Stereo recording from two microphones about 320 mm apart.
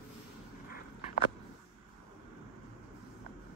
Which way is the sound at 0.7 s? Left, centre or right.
Left.